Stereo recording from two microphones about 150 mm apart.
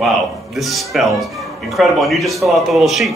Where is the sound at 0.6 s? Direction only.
Centre (ahead or behind).